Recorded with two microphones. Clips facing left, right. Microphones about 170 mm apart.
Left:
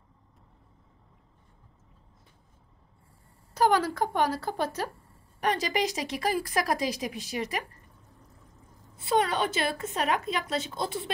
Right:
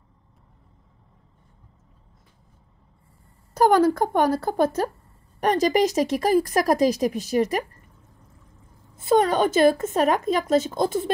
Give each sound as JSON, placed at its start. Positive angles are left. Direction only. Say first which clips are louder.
{"t": 3.5, "sound": "speech", "louder": "right 7 dB", "side_deg": -50}
{"t": 8.9, "sound": "speech", "louder": "right 7 dB", "side_deg": -45}